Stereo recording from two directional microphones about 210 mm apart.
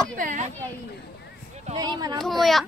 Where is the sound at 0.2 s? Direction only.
40° right (ahead or behind).